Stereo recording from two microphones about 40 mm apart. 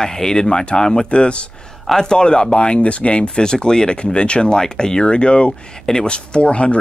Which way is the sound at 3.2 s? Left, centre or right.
Centre.